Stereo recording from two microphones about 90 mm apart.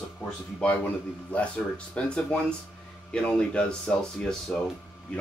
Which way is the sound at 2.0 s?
10° left (ahead or behind).